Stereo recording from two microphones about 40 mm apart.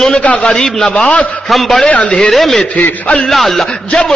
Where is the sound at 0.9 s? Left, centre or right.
Left.